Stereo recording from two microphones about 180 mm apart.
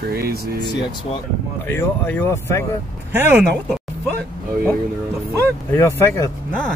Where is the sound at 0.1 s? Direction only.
60° right (ahead or behind).